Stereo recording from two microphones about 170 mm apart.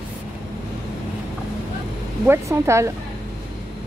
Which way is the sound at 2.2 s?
15° right (ahead or behind).